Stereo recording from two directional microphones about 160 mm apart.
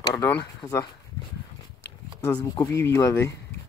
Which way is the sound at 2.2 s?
20° left (ahead or behind).